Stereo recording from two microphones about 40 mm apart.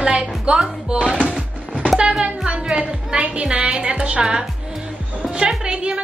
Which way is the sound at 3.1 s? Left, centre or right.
Right.